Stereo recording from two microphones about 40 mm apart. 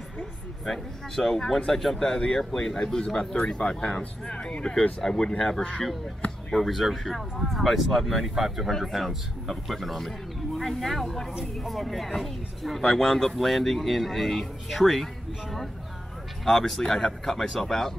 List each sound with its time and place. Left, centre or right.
0.7 s speech: centre
2.0 s speech: centre
5.0 s speech: centre
16.4 s speech: centre